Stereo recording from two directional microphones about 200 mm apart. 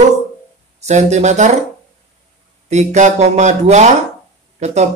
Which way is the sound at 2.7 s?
35° right (ahead or behind).